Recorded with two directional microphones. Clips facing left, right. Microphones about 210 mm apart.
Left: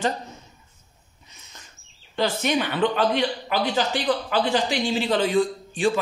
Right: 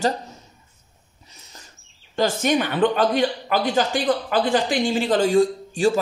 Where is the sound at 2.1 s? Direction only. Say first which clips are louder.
Right 3 dB; 45° right (ahead or behind).